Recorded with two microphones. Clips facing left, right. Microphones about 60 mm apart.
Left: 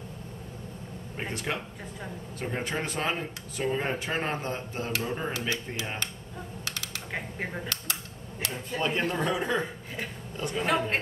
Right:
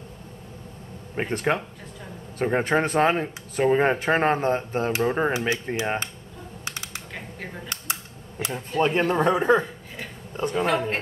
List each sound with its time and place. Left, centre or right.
1.3 s speech: right
5.3 s speech: right
6.6 s typing: right
7.1 s a sound: left
7.7 s camera: right
8.8 s a man's voice: right
10.6 s speech: centre